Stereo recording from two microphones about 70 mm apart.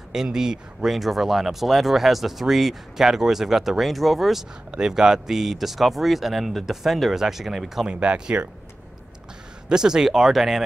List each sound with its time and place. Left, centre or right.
0.1 s speech: centre
7.9 s speech: centre
9.7 s speech: centre